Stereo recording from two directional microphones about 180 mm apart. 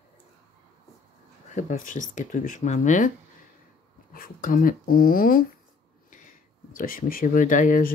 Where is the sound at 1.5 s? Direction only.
45° left (ahead or behind).